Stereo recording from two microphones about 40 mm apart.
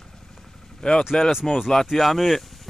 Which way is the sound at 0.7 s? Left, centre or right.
Centre.